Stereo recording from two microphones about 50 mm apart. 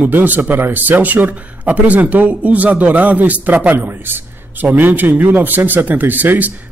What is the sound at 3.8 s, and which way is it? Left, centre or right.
Speech, right.